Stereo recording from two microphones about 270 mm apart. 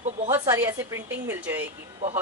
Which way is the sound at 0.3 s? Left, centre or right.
Centre.